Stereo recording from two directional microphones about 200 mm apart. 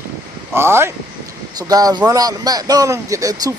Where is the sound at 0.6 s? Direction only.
10° right (ahead or behind).